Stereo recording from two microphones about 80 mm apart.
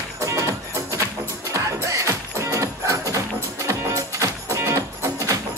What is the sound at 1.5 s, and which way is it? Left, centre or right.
Music, right.